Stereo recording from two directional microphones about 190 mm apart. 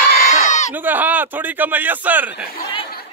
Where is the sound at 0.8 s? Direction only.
10° right (ahead or behind).